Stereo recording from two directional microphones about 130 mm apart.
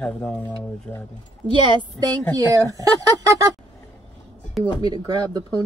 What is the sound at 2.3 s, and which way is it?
Speech, 25° right (ahead or behind).